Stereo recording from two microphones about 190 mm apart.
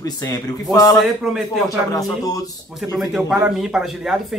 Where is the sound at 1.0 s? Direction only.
Centre (ahead or behind).